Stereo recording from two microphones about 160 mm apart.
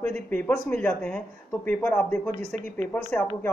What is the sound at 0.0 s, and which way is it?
Speech, 10° left (ahead or behind).